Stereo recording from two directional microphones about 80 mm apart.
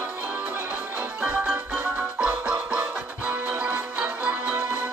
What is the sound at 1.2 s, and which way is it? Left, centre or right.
Music, right.